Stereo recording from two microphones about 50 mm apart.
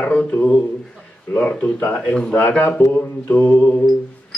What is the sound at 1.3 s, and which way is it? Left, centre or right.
A man's voice, left.